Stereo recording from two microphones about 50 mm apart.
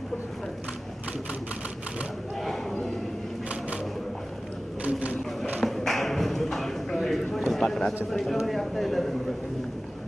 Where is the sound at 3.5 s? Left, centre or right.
Right.